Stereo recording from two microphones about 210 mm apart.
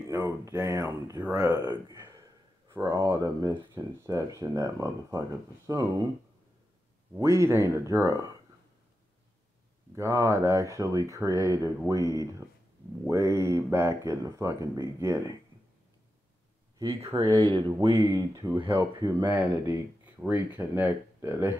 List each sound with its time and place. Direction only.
0.1 s speech: 15° right (ahead or behind)
1.9 s a sound: 15° right (ahead or behind)
2.7 s speech: 15° right (ahead or behind)
7.2 s speech: 15° right (ahead or behind)
9.9 s speech: 15° right (ahead or behind)
16.7 s speech: 15° right (ahead or behind)
18.0 s speech: 15° right (ahead or behind)